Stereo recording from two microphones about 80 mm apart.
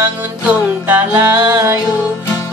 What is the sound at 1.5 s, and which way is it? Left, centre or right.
Music, right.